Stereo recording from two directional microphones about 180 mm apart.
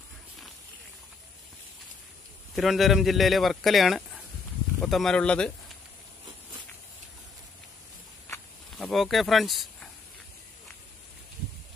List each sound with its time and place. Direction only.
2.5 s a man's voice: centre (ahead or behind)
8.7 s speech: centre (ahead or behind)